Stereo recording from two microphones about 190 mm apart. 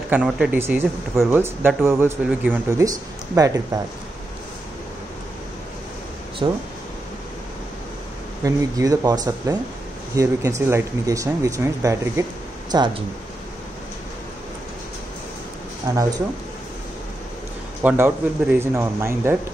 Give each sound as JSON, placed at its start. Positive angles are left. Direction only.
{"t": 0.1, "sound": "speech", "side_deg": -5}
{"t": 6.4, "sound": "speech", "side_deg": -25}
{"t": 8.5, "sound": "speech", "side_deg": -20}
{"t": 15.9, "sound": "speech", "side_deg": -20}
{"t": 17.8, "sound": "speech", "side_deg": -10}